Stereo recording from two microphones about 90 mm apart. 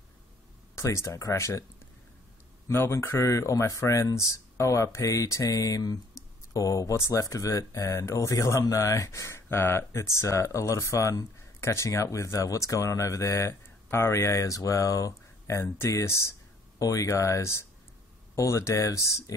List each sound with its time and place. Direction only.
0.7 s speech: 35° left (ahead or behind)
2.7 s speech: 25° left (ahead or behind)